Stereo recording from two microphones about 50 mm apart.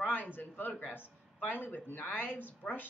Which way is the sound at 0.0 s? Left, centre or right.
Left.